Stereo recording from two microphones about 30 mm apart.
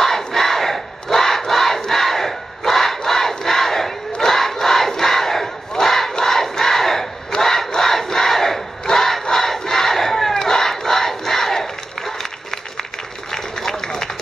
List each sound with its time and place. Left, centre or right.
0.0 s crowd: centre
13.3 s run: centre